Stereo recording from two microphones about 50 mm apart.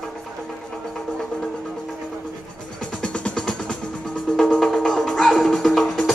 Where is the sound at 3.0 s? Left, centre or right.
Centre.